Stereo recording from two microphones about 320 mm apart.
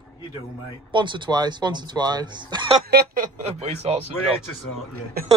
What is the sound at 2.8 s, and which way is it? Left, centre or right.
Speech, right.